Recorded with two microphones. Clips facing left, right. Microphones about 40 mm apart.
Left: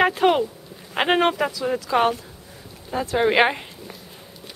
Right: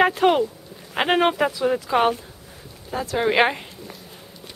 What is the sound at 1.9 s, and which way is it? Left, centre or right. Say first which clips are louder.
Speech: left 1 dB; right.